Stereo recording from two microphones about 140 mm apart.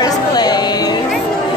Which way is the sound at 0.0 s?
30° left (ahead or behind).